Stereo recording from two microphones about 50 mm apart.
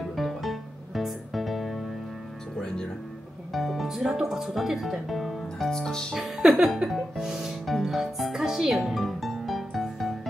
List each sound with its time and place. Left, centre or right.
0.1 s music: centre
3.5 s speech: centre
6.1 s music: centre